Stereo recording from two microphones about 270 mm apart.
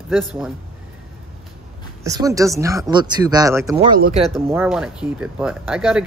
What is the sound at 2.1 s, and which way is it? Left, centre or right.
Speech, centre.